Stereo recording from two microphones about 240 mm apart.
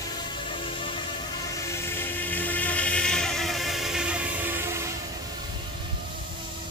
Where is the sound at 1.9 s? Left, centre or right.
Centre.